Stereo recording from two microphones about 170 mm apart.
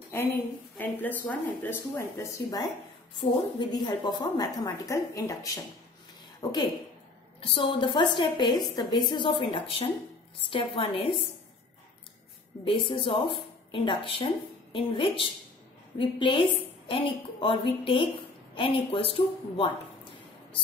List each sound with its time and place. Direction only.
0.1 s a woman's voice: 15° left (ahead or behind)
3.2 s a woman's voice: 30° left (ahead or behind)
12.6 s a woman's voice: 30° left (ahead or behind)